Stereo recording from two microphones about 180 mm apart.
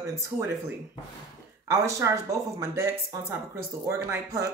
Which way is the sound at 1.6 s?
15° right (ahead or behind).